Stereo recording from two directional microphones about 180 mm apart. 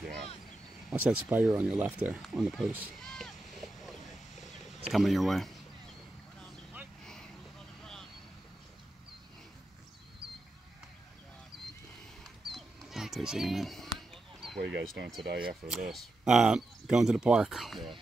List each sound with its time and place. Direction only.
0.8 s speech: 5° right (ahead or behind)
7.8 s vehicle: 5° left (ahead or behind)
11.5 s vehicle: centre (ahead or behind)
12.2 s a sound: centre (ahead or behind)
14.6 s speech: 90° right
15.2 s speech: 55° right (ahead or behind)
15.7 s speech: centre (ahead or behind)